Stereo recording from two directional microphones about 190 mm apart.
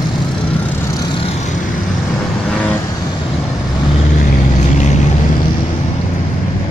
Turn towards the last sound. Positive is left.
turn(degrees=40)  # may be behind; listen again after turning